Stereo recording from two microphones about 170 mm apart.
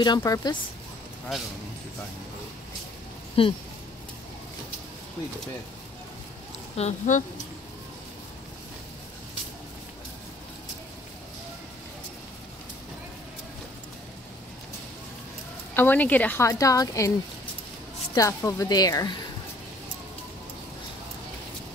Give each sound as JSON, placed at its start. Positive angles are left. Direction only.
{"t": 0.0, "sound": "a woman's voice", "side_deg": 25}
{"t": 3.4, "sound": "speech", "side_deg": 35}
{"t": 6.8, "sound": "speech", "side_deg": 45}
{"t": 15.7, "sound": "a woman's voice", "side_deg": 10}
{"t": 18.1, "sound": "a woman's voice", "side_deg": 20}